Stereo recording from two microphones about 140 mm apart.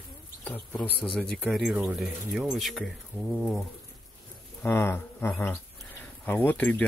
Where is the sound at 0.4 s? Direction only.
10° left (ahead or behind).